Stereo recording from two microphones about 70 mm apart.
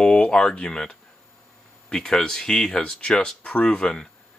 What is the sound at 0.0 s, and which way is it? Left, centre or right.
Speech, centre.